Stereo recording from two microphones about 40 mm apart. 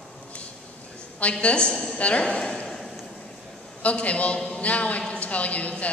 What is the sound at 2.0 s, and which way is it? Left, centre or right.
Speech, left.